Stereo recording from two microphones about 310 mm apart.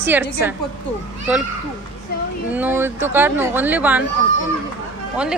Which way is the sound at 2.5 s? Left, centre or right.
Centre.